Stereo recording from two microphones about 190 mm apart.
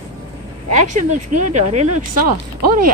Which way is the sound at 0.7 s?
40° right (ahead or behind).